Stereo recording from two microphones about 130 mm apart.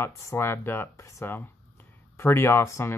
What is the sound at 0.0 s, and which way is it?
Speech, 20° left (ahead or behind).